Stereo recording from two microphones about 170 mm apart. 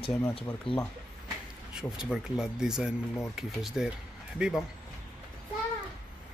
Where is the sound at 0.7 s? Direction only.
30° left (ahead or behind).